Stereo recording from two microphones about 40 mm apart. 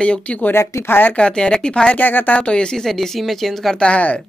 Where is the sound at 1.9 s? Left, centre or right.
Left.